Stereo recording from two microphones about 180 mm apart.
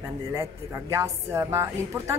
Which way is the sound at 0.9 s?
15° right (ahead or behind).